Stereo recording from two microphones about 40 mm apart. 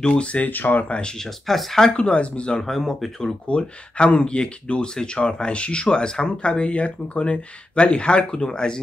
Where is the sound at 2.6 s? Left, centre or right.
Centre.